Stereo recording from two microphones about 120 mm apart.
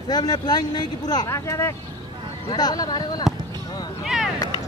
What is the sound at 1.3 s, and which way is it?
Speech, 25° left (ahead or behind).